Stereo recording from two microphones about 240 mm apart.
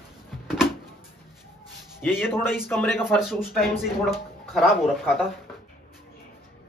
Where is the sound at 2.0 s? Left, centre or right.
Centre.